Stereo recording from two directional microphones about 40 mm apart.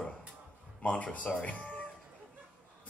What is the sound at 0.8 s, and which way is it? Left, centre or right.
Speech, left.